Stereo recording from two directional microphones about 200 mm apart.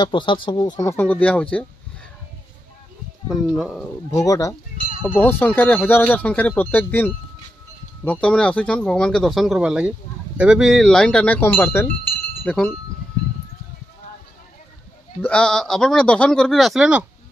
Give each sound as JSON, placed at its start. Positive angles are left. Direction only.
{"t": 0.0, "sound": "speech", "side_deg": 25}
{"t": 3.3, "sound": "speech", "side_deg": -5}
{"t": 4.1, "sound": "speech", "side_deg": 15}
{"t": 15.2, "sound": "speech", "side_deg": 5}